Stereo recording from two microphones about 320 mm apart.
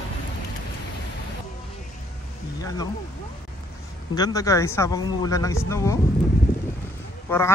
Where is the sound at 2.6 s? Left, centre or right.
Centre.